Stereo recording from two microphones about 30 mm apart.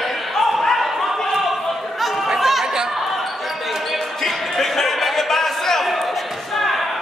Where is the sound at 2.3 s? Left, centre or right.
Centre.